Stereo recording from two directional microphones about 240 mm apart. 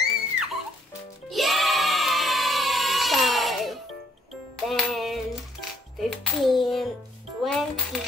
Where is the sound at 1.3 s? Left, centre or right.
Centre.